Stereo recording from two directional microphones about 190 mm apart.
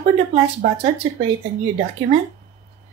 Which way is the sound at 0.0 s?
35° right (ahead or behind).